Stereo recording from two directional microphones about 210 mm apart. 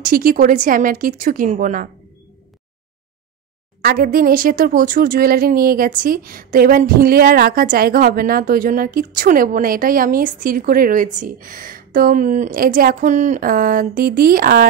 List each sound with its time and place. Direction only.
0.0 s a woman's voice: 40° right (ahead or behind)
3.8 s a woman's voice: 45° right (ahead or behind)